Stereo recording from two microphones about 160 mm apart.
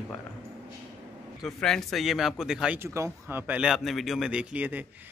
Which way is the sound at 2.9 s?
15° right (ahead or behind).